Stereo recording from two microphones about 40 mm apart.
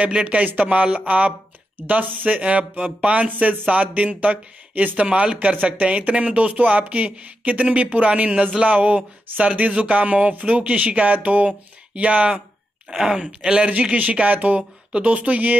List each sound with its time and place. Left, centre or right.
0.0 s speech: right
5.0 s speech: right
5.5 s speech: right
9.6 s speech: right
12.9 s speech: centre
13.2 s speech: right